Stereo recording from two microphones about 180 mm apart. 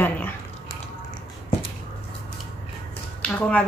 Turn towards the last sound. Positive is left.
turn(degrees=5)  # may be behind; listen again after turning